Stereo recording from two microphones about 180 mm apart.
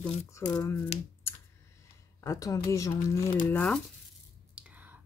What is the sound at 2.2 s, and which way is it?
Speech, 20° left (ahead or behind).